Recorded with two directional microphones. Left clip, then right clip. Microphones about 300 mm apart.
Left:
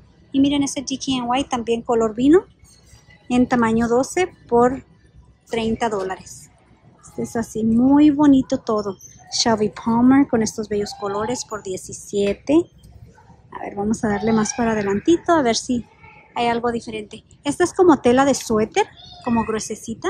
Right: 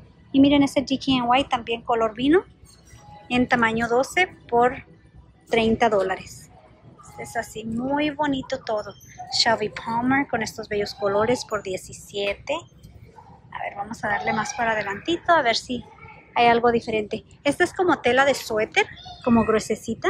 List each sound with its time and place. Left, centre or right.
0.3 s a woman's voice: centre
13.5 s a woman's voice: centre